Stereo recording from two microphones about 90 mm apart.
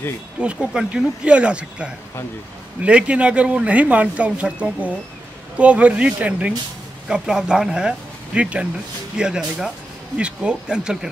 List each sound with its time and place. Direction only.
0.4 s speech: 10° right (ahead or behind)